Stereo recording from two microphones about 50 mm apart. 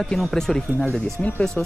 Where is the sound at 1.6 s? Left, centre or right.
Left.